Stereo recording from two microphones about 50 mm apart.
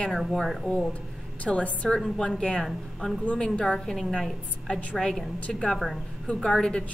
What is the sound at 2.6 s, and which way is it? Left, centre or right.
Speech, centre.